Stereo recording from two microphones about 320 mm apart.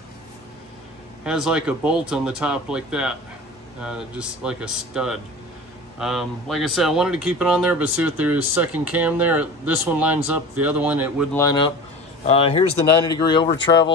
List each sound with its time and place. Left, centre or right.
1.2 s speech: centre
11.3 s speech: centre
13.6 s speech: left